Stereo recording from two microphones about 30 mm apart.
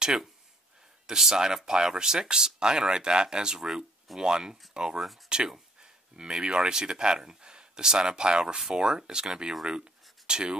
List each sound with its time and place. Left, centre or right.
1.0 s speech: centre
3.5 s speech: centre
4.2 s speech: right
9.7 s a sound: right